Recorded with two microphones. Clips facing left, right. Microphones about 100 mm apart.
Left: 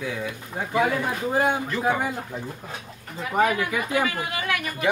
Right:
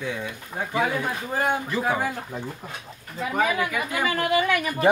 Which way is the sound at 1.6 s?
5° right (ahead or behind).